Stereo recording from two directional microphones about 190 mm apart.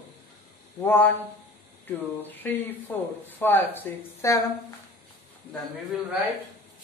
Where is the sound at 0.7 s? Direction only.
10° left (ahead or behind).